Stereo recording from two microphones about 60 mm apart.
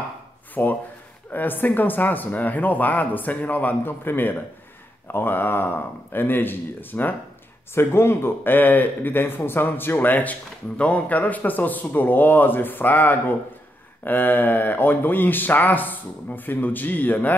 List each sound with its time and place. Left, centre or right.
0.6 s speech: left
7.7 s speech: left